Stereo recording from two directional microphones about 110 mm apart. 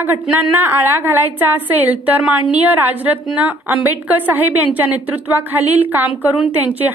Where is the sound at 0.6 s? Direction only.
20° right (ahead or behind).